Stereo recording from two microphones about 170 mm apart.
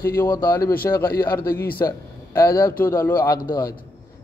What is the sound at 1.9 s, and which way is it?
A man's voice, 20° left (ahead or behind).